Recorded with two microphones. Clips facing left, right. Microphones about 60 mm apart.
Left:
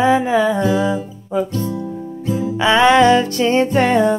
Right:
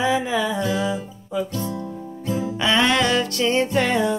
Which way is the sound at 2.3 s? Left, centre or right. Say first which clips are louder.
Left 5 dB; centre.